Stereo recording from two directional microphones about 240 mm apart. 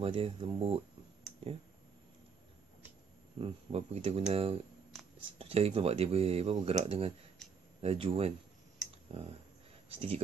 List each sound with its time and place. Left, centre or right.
0.0 s speech: right
3.3 s speech: right
7.4 s a sound: centre
7.8 s speech: right